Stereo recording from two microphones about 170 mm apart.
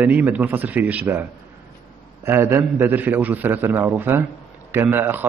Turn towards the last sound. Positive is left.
turn(degrees=-10)  # may be behind; listen again after turning